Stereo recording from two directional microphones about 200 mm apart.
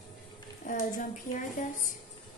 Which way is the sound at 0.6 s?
40° left (ahead or behind).